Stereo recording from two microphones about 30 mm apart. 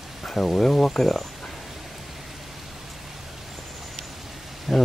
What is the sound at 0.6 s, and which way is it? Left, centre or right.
Speech, centre.